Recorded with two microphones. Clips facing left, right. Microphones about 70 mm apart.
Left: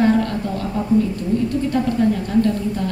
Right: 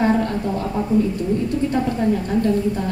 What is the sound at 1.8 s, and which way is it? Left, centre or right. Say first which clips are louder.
A woman's voice: left 1 dB; right.